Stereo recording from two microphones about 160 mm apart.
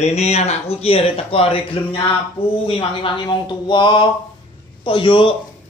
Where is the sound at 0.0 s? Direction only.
40° left (ahead or behind).